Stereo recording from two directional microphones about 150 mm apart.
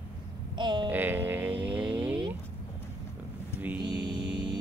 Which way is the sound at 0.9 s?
10° right (ahead or behind).